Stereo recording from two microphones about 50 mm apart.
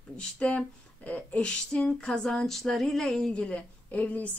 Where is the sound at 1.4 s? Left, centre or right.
Centre.